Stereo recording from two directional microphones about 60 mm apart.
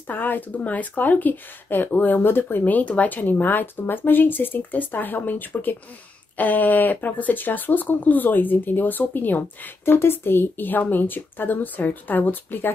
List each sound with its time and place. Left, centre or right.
0.1 s speech: left